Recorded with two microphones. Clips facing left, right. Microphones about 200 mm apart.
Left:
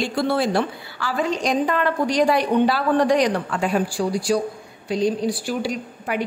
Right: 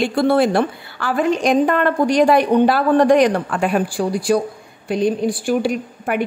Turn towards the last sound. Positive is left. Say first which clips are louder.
# right 5 dB
turn(degrees=-50)  # may be behind; listen again after turning